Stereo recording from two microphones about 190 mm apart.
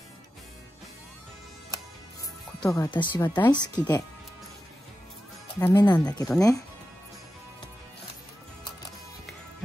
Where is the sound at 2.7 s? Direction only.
20° left (ahead or behind).